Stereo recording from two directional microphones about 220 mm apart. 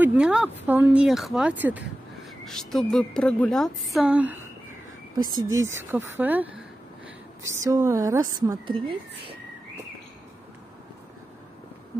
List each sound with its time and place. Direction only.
0.0 s a woman's voice: 5° right (ahead or behind)
5.4 s speech: 60° right (ahead or behind)
5.8 s speech: 10° right (ahead or behind)